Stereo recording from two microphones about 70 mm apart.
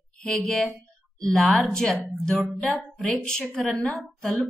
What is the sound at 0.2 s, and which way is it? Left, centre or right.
A woman's voice, centre.